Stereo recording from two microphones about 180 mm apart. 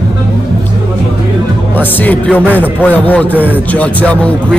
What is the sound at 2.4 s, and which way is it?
Speech, 10° right (ahead or behind).